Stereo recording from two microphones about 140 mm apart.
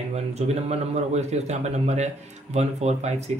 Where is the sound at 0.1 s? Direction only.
50° right (ahead or behind).